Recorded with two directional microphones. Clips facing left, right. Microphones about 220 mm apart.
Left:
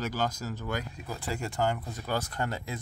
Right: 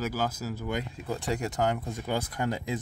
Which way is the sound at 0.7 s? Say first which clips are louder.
Right 3 dB; 25° right (ahead or behind).